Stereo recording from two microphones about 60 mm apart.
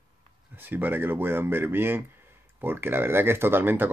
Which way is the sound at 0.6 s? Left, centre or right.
Right.